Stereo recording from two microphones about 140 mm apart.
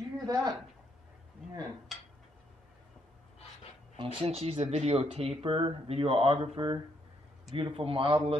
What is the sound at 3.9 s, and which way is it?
Speech, 40° right (ahead or behind).